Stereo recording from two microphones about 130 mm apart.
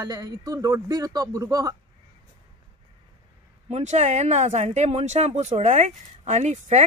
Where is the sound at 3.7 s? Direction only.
55° right (ahead or behind).